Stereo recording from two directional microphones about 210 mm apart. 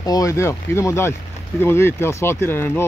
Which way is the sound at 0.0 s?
15° left (ahead or behind).